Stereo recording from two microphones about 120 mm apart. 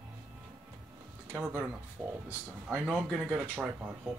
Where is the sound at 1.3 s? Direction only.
10° right (ahead or behind).